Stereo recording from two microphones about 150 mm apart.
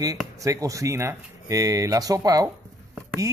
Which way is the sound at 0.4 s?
20° right (ahead or behind).